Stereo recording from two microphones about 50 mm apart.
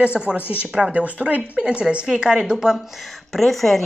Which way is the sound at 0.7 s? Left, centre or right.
Centre.